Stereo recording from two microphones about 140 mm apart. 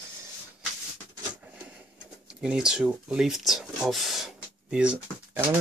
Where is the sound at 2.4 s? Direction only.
5° right (ahead or behind).